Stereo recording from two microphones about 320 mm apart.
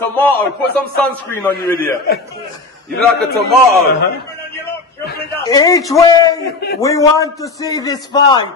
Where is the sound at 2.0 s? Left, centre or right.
Left.